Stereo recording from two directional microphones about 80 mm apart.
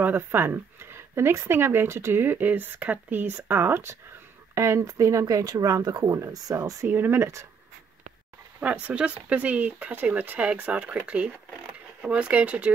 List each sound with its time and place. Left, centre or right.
0.0 s speech: right
6.9 s speech: right
8.5 s speech: centre
12.0 s speech: centre